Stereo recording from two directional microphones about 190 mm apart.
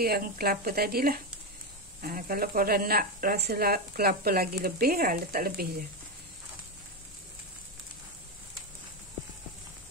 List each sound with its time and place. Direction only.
0.0 s speech: 50° right (ahead or behind)